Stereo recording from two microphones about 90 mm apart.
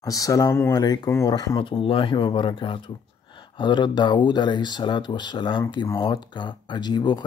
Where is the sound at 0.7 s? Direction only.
45° left (ahead or behind).